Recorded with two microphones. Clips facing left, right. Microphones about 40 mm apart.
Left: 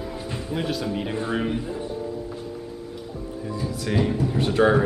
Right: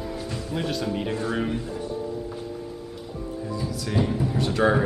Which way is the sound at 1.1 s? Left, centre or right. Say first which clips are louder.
Left 1 dB; centre.